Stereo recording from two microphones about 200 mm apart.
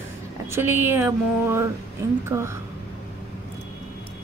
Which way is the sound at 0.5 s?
10° right (ahead or behind).